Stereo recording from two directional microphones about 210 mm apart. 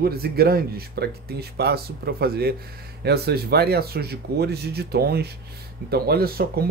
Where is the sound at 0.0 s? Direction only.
45° right (ahead or behind).